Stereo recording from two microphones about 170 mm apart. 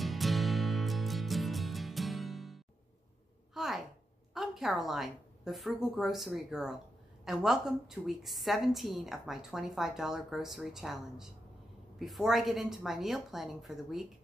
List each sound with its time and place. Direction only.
0.0 s music: centre (ahead or behind)
3.5 s a sound: centre (ahead or behind)
4.3 s a woman's voice: centre (ahead or behind)